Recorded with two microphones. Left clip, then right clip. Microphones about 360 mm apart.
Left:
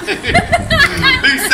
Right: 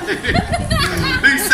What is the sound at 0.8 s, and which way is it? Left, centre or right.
Music, left.